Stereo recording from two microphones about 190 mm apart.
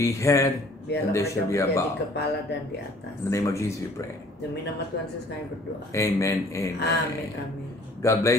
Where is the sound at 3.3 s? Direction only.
15° left (ahead or behind).